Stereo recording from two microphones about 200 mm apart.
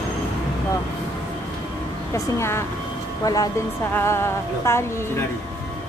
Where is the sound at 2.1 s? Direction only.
15° left (ahead or behind).